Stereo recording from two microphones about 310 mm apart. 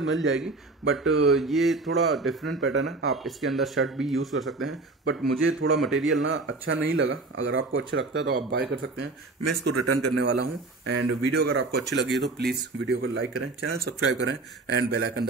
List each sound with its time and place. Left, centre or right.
0.0 s speech: right
1.3 s speech: centre
2.6 s speech: right
3.3 s speech: centre
4.6 s speech: right
5.8 s speech: centre
6.2 s speech: right
9.7 s speech: right